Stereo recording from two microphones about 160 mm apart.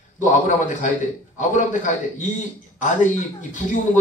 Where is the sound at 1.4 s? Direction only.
50° left (ahead or behind).